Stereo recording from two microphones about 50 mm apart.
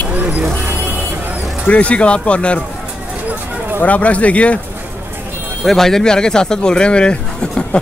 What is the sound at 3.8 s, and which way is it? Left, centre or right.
Speech, left.